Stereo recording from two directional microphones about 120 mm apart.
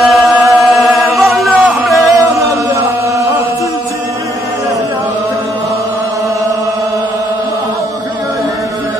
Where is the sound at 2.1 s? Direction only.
25° right (ahead or behind).